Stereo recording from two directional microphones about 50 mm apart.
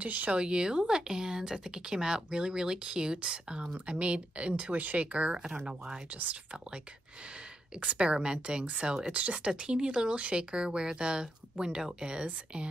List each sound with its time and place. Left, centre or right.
0.0 s speech: right
0.4 s speech: centre
7.8 s speech: right